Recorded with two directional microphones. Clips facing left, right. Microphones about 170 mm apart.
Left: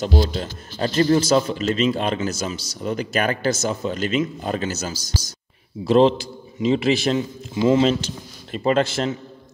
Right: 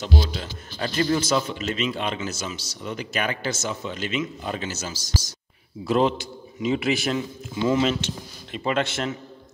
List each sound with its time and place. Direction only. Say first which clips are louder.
0.0 s speech: left 5 dB; 45° left (ahead or behind)